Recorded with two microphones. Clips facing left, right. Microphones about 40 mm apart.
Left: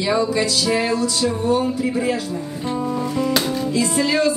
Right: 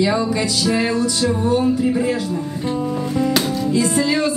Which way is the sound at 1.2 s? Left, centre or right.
Right.